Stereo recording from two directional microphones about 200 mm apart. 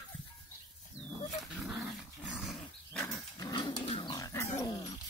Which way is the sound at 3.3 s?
20° left (ahead or behind).